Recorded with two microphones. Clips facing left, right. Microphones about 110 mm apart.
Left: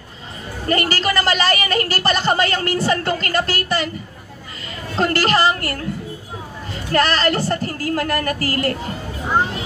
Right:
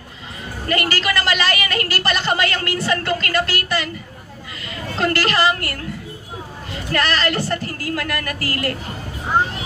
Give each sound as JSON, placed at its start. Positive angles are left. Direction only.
{"t": 0.7, "sound": "a woman's voice", "side_deg": 35}
{"t": 4.9, "sound": "a woman's voice", "side_deg": 35}
{"t": 6.9, "sound": "a woman's voice", "side_deg": 35}